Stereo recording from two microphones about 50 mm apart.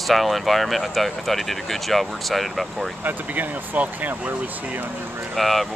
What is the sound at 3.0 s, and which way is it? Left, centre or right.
Speech, right.